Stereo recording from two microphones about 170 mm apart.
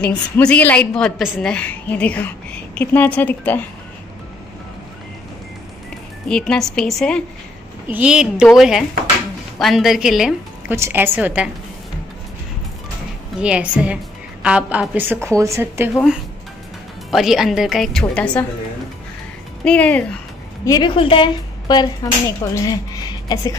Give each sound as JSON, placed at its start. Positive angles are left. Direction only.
{"t": 0.0, "sound": "a woman's voice", "side_deg": 5}
{"t": 6.2, "sound": "a woman's voice", "side_deg": 5}
{"t": 13.4, "sound": "a woman's voice", "side_deg": -5}
{"t": 15.9, "sound": "a woman's voice", "side_deg": 0}
{"t": 19.6, "sound": "a woman's voice", "side_deg": 5}
{"t": 20.6, "sound": "a woman's voice", "side_deg": 25}